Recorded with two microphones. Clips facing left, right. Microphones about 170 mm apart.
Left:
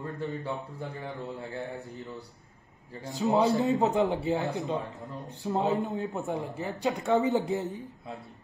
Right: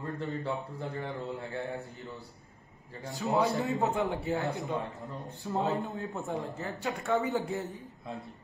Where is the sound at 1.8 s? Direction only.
20° left (ahead or behind).